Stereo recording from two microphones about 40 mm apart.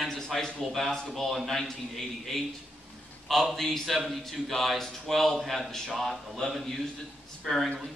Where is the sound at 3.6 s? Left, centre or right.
Centre.